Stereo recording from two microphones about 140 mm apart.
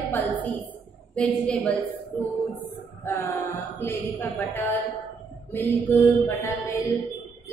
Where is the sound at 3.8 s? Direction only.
15° left (ahead or behind).